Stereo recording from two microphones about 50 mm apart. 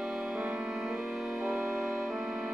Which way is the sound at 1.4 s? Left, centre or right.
Right.